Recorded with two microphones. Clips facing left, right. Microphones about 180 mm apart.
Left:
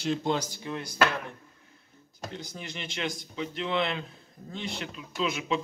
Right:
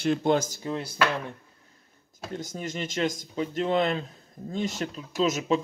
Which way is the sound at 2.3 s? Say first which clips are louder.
Right 8 dB; 45° right (ahead or behind).